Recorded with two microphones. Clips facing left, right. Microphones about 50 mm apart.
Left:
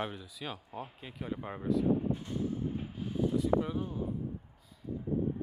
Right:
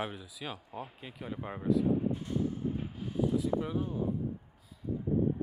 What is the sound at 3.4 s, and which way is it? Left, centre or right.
Speech, centre.